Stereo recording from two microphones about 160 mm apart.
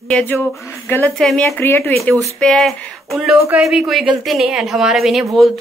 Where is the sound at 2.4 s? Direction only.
5° left (ahead or behind).